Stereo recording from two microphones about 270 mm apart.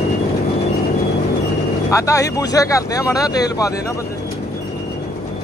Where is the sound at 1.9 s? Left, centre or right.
Centre.